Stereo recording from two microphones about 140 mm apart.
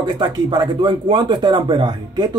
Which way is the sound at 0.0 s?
30° right (ahead or behind).